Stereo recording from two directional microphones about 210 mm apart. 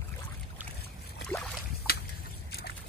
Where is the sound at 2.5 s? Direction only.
50° left (ahead or behind).